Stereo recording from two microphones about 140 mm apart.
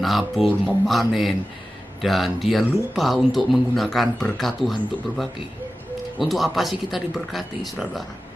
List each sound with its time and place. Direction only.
0.0 s speech: centre (ahead or behind)